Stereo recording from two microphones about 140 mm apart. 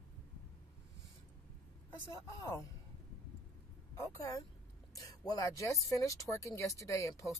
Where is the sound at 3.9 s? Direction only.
20° left (ahead or behind).